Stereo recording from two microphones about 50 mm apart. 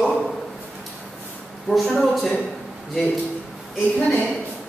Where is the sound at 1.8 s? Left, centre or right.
Centre.